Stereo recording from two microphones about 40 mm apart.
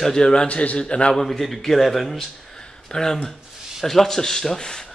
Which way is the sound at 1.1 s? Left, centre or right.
Centre.